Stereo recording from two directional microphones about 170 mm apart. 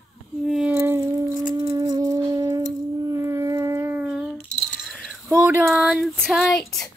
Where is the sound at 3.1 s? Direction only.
15° right (ahead or behind).